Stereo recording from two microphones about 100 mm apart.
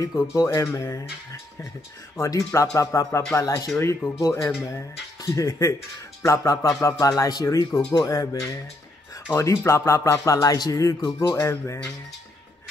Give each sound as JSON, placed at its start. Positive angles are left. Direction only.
{"t": 0.0, "sound": "music", "side_deg": 30}
{"t": 3.8, "sound": "speech", "side_deg": 30}
{"t": 5.2, "sound": "music", "side_deg": 35}
{"t": 11.3, "sound": "speech", "side_deg": 25}